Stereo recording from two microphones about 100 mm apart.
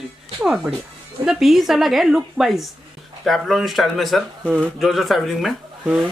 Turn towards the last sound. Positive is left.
turn(degrees=0)  # may be behind; listen again after turning